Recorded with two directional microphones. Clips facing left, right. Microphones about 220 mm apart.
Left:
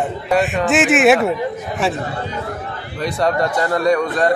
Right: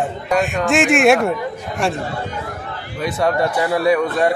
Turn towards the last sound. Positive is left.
turn(degrees=-5)  # may be behind; listen again after turning